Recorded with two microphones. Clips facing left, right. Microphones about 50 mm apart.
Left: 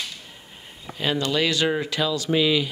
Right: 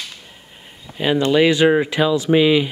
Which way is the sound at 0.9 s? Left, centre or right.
Centre.